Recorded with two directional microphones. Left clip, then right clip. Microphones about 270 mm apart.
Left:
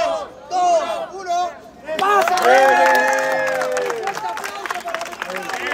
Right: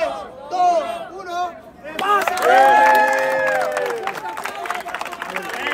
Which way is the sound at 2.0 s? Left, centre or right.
Left.